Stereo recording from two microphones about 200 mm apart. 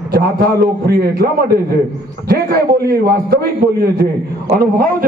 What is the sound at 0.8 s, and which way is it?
A man's voice, 50° right (ahead or behind).